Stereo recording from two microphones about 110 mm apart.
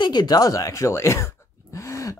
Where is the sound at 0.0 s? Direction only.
40° left (ahead or behind).